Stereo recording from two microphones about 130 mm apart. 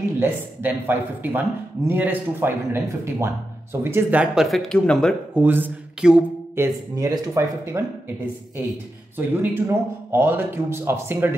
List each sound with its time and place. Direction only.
0.2 s a man's voice: 15° right (ahead or behind)
4.5 s speech: 5° left (ahead or behind)
5.3 s speech: 15° right (ahead or behind)
6.5 s speech: 20° right (ahead or behind)
9.1 s a man's voice: 15° right (ahead or behind)